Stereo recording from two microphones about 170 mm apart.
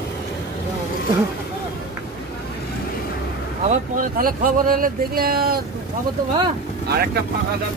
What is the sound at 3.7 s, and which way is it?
Speech, 55° right (ahead or behind).